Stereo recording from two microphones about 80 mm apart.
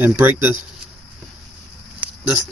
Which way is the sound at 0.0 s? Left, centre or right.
Right.